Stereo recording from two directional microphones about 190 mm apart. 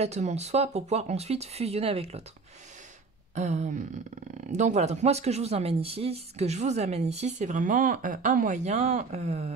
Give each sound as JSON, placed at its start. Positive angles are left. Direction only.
{"t": 0.0, "sound": "speech", "side_deg": -35}
{"t": 3.3, "sound": "speech", "side_deg": -35}